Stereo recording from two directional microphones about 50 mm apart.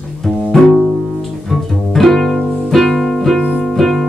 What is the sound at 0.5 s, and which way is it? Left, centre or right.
Music, centre.